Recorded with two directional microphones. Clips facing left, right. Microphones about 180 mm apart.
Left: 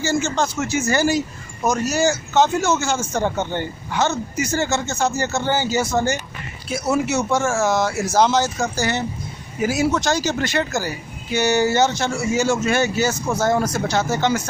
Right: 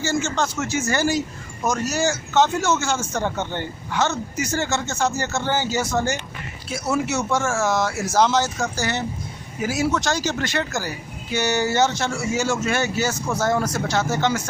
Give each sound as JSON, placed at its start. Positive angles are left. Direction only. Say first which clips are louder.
{"t": 0.1, "sound": "a man's voice", "louder": "left 3 dB", "side_deg": 10}
{"t": 9.6, "sound": "a man's voice", "louder": "left 3 dB", "side_deg": 15}
{"t": 13.8, "sound": "a man's voice", "louder": "left 2 dB", "side_deg": 15}